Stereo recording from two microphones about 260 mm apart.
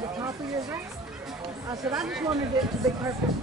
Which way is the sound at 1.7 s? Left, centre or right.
Centre.